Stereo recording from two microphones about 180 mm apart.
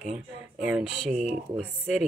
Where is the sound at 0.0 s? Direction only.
5° right (ahead or behind).